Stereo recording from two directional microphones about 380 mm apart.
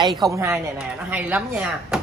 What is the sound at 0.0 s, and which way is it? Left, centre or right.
Speech, centre.